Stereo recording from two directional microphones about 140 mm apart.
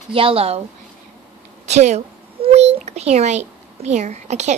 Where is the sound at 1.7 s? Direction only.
55° right (ahead or behind).